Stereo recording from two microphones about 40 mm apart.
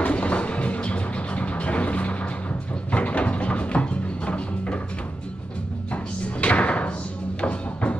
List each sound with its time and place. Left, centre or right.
0.0 s music: left
6.4 s thump: left
7.4 s music: left